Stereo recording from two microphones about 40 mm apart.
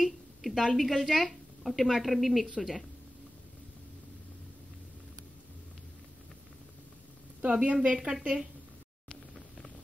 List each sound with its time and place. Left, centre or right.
0.0 s a sound: centre
0.7 s speech: centre
7.4 s a woman's voice: right